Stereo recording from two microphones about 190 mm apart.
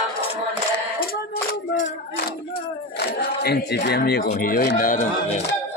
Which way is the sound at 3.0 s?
55° left (ahead or behind).